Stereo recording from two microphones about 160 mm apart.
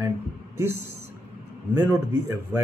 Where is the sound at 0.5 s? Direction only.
15° right (ahead or behind).